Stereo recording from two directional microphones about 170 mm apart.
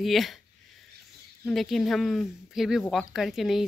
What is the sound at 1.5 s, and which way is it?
Speech, centre (ahead or behind).